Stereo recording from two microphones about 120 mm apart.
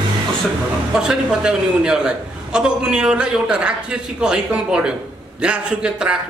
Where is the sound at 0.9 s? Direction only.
5° right (ahead or behind).